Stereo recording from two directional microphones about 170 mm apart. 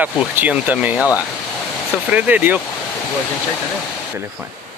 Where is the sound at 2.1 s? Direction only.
10° right (ahead or behind).